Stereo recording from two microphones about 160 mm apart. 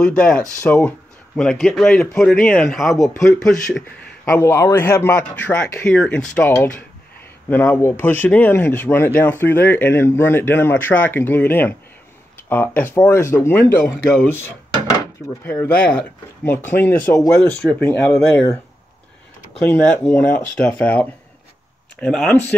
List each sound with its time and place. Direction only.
0.0 s speech: 5° left (ahead or behind)
15.4 s speech: 10° left (ahead or behind)
17.4 s speech: 5° left (ahead or behind)
19.6 s speech: 10° left (ahead or behind)